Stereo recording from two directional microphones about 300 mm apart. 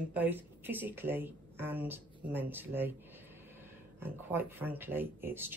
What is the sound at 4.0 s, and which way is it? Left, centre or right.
Speech, centre.